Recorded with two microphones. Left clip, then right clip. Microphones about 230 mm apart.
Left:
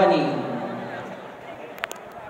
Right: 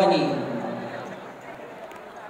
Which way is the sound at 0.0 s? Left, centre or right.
Left.